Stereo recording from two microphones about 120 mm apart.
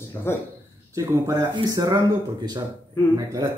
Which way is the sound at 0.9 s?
25° right (ahead or behind).